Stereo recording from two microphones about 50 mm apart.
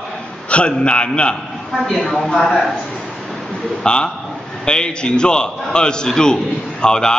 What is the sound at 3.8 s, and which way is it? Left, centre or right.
A man's voice, centre.